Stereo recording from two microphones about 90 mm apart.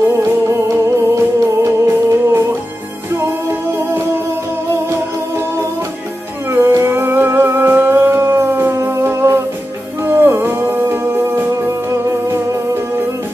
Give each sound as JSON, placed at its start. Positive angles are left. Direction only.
{"t": 0.1, "sound": "music", "side_deg": -30}
{"t": 6.5, "sound": "music", "side_deg": -30}